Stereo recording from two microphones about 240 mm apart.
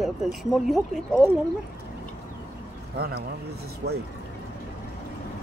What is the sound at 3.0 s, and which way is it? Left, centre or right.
Speech, right.